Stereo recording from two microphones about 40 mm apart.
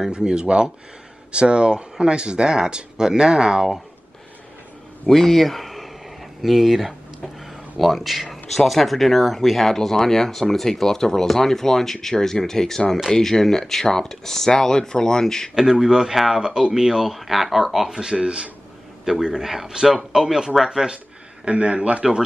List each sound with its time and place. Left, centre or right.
0.1 s speech: right
5.1 s speech: centre
15.5 s speech: centre
17.8 s speech: centre
18.2 s speech: right
19.3 s speech: centre
21.5 s a man's voice: right
22.0 s speech: centre